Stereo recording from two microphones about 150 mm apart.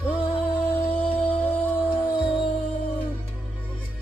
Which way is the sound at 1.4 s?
15° left (ahead or behind).